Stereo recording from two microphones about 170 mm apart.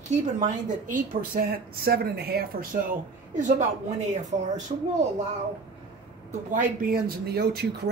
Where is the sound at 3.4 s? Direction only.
45° right (ahead or behind).